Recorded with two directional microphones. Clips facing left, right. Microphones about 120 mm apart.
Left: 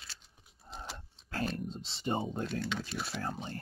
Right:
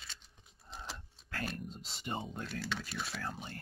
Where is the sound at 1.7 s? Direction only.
30° left (ahead or behind).